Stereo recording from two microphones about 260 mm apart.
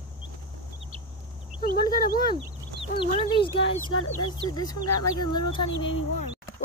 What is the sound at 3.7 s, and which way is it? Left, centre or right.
Speech, left.